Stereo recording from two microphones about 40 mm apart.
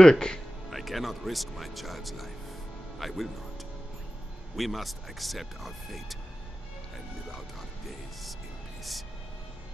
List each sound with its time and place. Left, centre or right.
0.0 s speech: centre
0.7 s speech: centre
4.6 s speech: centre
7.2 s music: centre